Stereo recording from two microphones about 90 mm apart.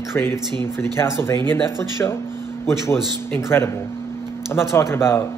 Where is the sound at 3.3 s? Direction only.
25° left (ahead or behind).